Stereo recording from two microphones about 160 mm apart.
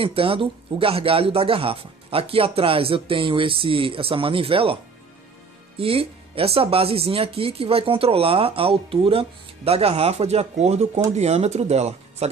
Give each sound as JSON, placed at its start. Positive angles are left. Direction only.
{"t": 0.0, "sound": "speech", "side_deg": -35}
{"t": 5.8, "sound": "speech", "side_deg": -35}